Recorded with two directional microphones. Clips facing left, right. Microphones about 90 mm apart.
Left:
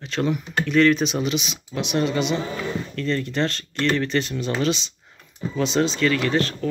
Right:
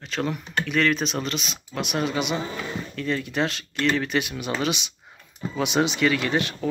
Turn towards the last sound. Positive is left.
turn(degrees=-15)  # may be behind; listen again after turning